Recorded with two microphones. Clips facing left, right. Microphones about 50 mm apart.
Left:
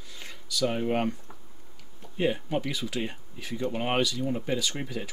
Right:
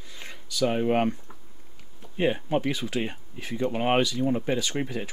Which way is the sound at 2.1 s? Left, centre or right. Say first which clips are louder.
Right 3 dB; right.